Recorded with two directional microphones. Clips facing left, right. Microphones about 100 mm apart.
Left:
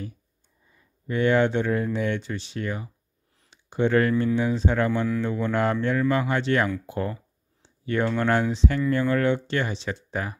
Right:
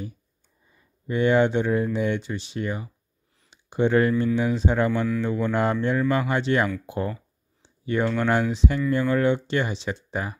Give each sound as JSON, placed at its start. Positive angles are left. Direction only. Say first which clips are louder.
{"t": 1.0, "sound": "speech", "louder": "right 1 dB", "side_deg": -15}
{"t": 7.6, "sound": "a sound", "louder": "right 1 dB", "side_deg": -15}
{"t": 8.2, "sound": "speech", "louder": "even", "side_deg": -10}